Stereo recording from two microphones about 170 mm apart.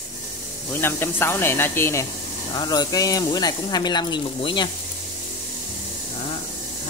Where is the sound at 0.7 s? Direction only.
15° left (ahead or behind).